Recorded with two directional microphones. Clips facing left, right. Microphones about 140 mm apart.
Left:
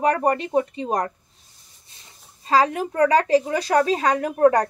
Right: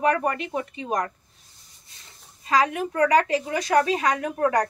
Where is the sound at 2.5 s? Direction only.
35° left (ahead or behind).